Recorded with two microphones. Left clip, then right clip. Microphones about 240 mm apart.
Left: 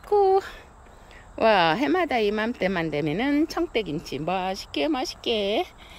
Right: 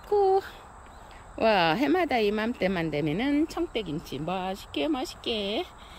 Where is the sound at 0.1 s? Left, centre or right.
Centre.